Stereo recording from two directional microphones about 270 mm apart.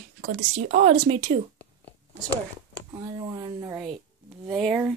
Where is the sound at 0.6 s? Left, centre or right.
Right.